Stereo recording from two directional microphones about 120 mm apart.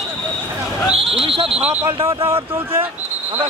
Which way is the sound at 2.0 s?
50° right (ahead or behind).